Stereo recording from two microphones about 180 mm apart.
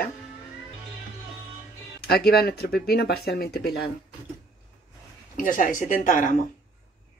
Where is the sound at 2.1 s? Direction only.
60° left (ahead or behind).